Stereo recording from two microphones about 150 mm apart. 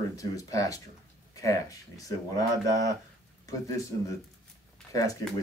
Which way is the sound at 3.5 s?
20° left (ahead or behind).